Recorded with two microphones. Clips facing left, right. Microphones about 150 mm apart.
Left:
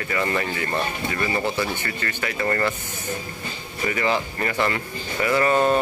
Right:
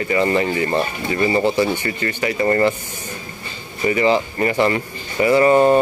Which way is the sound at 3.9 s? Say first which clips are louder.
Right 7 dB; 15° right (ahead or behind).